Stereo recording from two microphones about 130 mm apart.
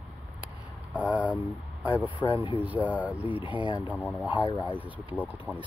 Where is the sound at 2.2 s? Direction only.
40° left (ahead or behind).